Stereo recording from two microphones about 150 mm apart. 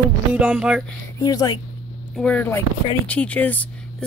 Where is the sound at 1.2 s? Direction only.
25° left (ahead or behind).